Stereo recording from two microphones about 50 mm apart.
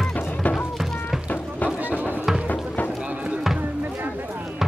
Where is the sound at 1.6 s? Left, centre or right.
Left.